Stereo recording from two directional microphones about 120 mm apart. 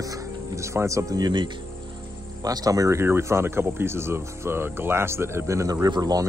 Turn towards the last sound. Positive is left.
turn(degrees=-35)  # may be behind; listen again after turning